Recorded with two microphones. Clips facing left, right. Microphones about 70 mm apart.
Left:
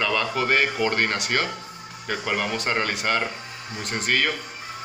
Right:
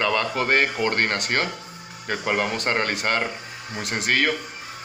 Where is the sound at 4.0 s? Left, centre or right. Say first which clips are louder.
Right 1 dB; right.